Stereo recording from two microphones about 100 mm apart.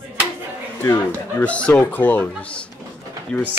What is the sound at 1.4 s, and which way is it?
Speech, 15° left (ahead or behind).